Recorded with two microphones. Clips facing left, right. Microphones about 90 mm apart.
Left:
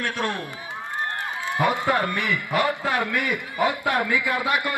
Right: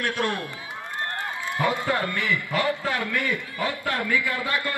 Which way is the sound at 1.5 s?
20° left (ahead or behind).